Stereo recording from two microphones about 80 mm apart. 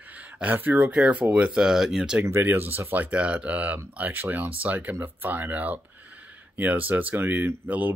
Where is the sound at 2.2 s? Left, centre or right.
Right.